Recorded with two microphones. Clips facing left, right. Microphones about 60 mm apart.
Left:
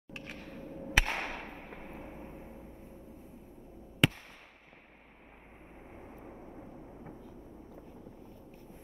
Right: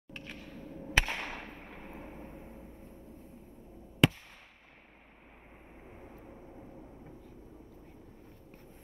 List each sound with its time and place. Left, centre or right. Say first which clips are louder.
0.4 s a sound: left 2 dB; left
2.3 s vehicle: left 1 dB; left
4.0 s fireworks: right 2 dB; centre
6.0 s vehicle: left 3 dB; left